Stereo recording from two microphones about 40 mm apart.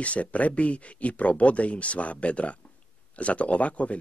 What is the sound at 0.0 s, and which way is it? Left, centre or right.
Speech, left.